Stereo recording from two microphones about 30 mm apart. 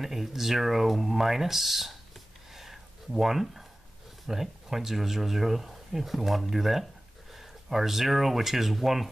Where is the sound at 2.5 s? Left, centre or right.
Centre.